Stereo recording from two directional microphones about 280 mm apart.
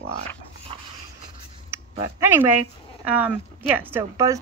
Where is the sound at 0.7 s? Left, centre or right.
Centre.